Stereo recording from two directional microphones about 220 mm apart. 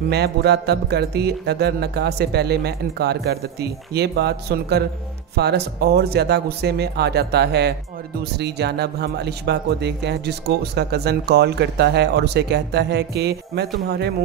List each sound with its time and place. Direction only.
0.1 s speech: 50° right (ahead or behind)